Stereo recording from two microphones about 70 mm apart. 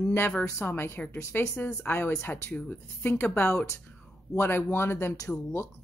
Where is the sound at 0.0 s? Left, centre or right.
Left.